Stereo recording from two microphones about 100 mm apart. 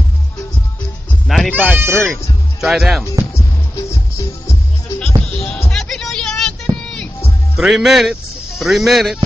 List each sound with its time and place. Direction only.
1.2 s music: centre (ahead or behind)
1.5 s speech: 15° right (ahead or behind)
2.6 s speech: centre (ahead or behind)
4.9 s music: 10° left (ahead or behind)
7.5 s speech: 5° right (ahead or behind)